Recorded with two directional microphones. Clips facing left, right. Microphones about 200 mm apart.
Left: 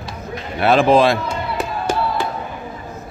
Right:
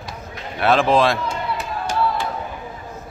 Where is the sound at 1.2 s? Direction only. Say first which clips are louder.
Left 2 dB; 60° left (ahead or behind).